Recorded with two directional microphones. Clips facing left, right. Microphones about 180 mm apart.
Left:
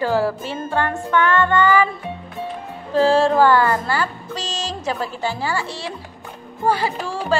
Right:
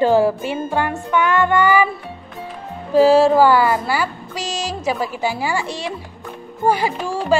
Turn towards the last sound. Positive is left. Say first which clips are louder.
# right 3 dB
turn(degrees=-15)  # may be behind; listen again after turning